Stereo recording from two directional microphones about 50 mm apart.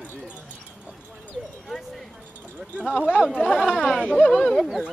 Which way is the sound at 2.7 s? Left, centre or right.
Right.